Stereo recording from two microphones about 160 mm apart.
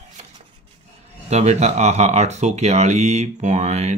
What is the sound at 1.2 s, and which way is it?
Speech, 45° right (ahead or behind).